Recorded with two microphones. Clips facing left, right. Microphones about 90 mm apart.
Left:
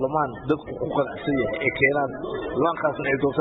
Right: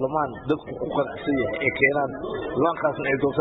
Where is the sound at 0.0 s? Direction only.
45° left (ahead or behind).